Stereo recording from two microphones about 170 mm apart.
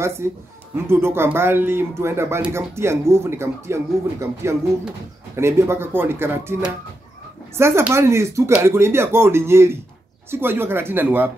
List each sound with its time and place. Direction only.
0.7 s speech: 15° right (ahead or behind)
7.5 s speech: 15° right (ahead or behind)